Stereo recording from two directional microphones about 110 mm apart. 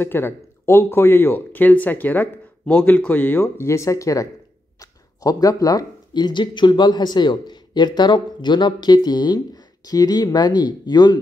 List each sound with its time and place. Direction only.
0.0 s speech: 20° left (ahead or behind); by 11.1 s 40° left (ahead or behind)